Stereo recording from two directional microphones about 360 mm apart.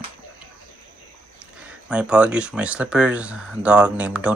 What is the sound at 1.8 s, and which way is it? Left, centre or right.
Speech, centre.